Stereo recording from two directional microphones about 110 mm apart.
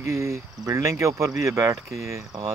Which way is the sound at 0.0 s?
25° right (ahead or behind).